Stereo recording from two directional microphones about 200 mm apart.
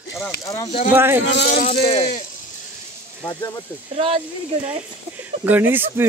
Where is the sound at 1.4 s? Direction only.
35° left (ahead or behind).